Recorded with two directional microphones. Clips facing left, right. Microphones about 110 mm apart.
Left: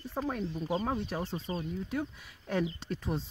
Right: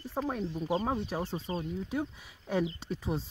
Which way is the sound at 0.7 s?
25° right (ahead or behind).